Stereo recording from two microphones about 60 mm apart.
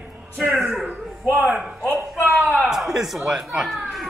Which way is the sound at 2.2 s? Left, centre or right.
Right.